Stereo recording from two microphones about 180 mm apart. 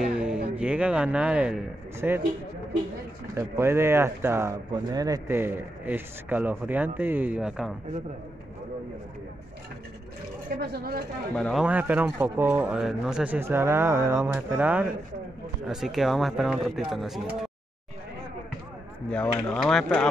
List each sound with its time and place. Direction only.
0.0 s a sound: 5° right (ahead or behind)
0.6 s speech: 5° right (ahead or behind)
3.3 s speech: 15° right (ahead or behind)
10.6 s speech: 60° right (ahead or behind)
11.3 s speech: 5° left (ahead or behind)
11.6 s speech: 10° right (ahead or behind)
19.0 s speech: 10° left (ahead or behind)